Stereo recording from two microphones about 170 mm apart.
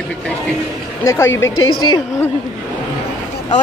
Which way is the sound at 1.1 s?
15° left (ahead or behind).